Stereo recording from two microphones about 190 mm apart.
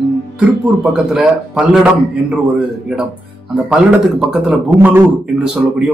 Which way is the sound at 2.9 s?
5° right (ahead or behind).